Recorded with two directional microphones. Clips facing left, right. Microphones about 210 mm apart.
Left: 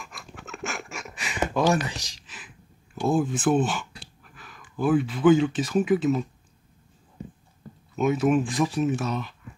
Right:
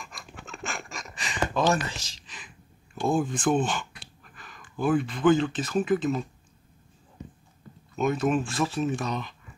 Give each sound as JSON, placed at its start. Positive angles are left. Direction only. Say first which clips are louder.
{"t": 0.0, "sound": "a sound", "louder": "left 1 dB", "side_deg": 5}
{"t": 4.0, "sound": "speech", "louder": "left 1 dB", "side_deg": 0}
{"t": 7.9, "sound": "speech", "louder": "left 3 dB", "side_deg": 5}